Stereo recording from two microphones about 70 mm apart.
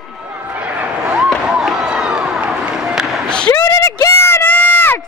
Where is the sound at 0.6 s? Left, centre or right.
Centre.